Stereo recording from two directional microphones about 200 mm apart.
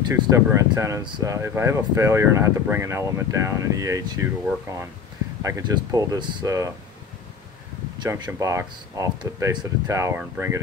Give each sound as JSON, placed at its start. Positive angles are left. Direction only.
{"t": 0.3, "sound": "speech", "side_deg": -15}
{"t": 8.0, "sound": "speech", "side_deg": -15}